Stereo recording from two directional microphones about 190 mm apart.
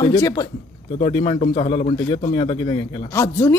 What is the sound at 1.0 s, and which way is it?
A man's voice, 30° left (ahead or behind).